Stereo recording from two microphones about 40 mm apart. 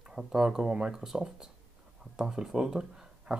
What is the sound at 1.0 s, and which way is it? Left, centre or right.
Speech, centre.